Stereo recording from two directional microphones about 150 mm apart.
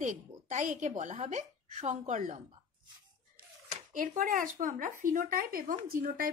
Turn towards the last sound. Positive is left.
turn(degrees=-70)  # may be behind; listen again after turning